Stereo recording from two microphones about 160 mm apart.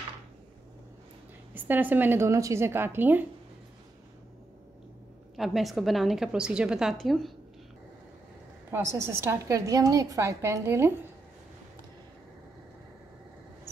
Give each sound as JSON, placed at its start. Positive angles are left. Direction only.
{"t": 1.5, "sound": "a woman's voice", "side_deg": -10}
{"t": 5.3, "sound": "a woman's voice", "side_deg": 0}
{"t": 8.6, "sound": "a woman's voice", "side_deg": -15}